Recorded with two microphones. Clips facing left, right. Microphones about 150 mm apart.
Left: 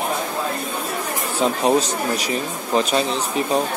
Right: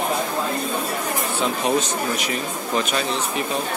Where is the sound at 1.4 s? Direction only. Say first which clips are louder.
Left 5 dB; 35° left (ahead or behind).